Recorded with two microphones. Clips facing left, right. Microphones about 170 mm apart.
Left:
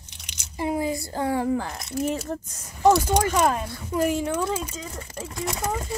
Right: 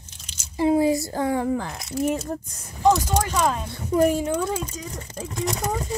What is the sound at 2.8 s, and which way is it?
Speech, 10° left (ahead or behind).